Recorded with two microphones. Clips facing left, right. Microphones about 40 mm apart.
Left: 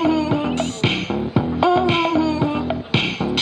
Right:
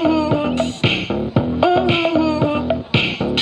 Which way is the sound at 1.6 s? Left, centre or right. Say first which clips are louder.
Right 1 dB; centre.